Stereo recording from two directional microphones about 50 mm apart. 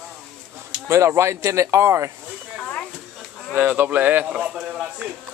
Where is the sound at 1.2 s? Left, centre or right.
Right.